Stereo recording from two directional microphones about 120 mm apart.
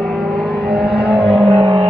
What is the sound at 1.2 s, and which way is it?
Vehicle, 55° right (ahead or behind).